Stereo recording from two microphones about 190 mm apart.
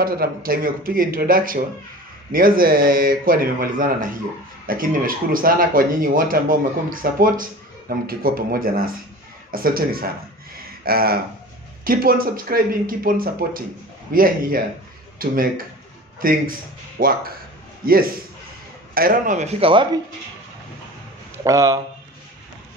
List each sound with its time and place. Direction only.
0.0 s speech: 50° right (ahead or behind); by 20.0 s 25° right (ahead or behind)
21.5 s speech: 20° right (ahead or behind)